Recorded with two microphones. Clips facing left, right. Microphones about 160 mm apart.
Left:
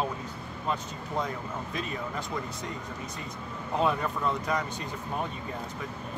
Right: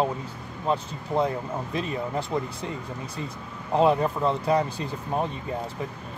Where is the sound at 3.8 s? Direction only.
30° right (ahead or behind).